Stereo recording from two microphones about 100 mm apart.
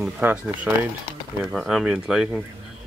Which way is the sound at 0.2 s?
20° right (ahead or behind).